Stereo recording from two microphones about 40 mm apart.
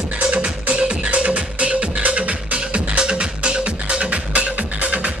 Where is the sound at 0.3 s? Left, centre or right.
Right.